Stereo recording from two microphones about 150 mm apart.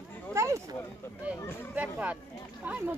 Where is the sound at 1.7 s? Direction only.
10° right (ahead or behind).